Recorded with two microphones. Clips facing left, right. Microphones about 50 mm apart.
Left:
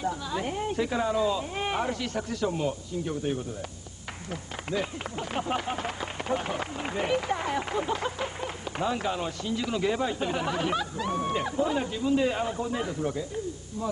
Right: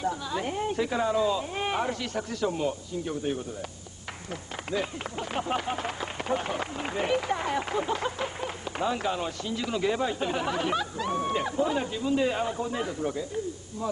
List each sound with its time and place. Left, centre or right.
0.0 s speech: centre
4.3 s speech: centre